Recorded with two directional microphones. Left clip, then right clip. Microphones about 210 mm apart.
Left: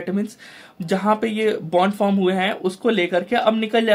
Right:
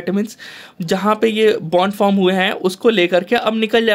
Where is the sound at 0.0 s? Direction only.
40° right (ahead or behind).